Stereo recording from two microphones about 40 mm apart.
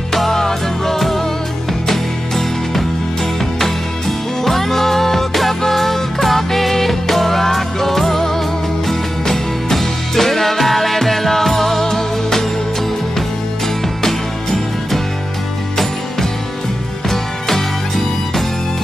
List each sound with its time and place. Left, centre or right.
0.1 s music: centre
4.5 s music: centre
14.0 s music: centre
17.1 s music: centre